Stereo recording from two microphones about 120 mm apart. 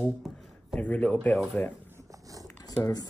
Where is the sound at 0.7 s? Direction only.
10° left (ahead or behind).